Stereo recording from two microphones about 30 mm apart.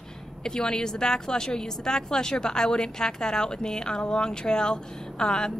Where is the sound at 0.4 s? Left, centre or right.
Left.